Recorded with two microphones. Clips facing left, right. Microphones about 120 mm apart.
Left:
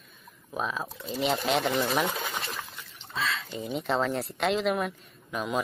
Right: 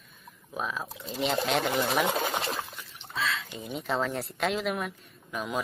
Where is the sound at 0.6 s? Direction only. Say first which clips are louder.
Left 2 dB; centre (ahead or behind).